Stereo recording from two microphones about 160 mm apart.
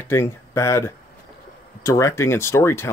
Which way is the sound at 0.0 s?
15° left (ahead or behind).